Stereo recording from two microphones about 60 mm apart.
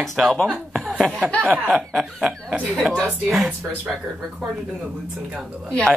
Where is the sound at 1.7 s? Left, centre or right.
Centre.